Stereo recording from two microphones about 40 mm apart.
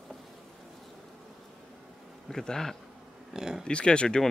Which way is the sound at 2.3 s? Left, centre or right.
Centre.